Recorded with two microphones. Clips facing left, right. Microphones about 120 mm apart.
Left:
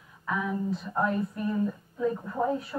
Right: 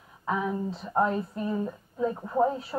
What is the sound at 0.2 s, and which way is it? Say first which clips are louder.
A woman's voice: right 1 dB; 30° right (ahead or behind).